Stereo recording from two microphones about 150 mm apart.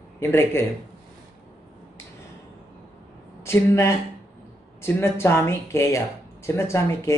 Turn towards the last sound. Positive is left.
turn(degrees=20)  # may be behind; listen again after turning